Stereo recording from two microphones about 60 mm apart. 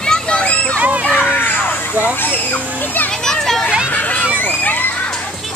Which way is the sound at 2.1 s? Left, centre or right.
Left.